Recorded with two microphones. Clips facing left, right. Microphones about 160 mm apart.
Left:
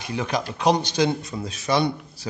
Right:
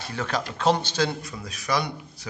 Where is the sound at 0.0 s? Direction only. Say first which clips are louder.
Left 3 dB; 15° left (ahead or behind).